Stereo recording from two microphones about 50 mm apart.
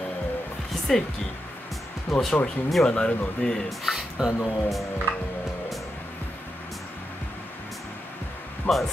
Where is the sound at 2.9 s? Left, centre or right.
Left.